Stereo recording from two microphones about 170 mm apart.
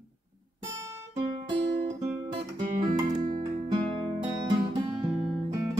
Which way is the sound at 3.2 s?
55° right (ahead or behind).